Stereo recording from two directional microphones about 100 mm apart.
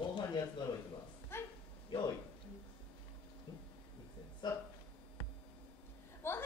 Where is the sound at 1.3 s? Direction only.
25° left (ahead or behind).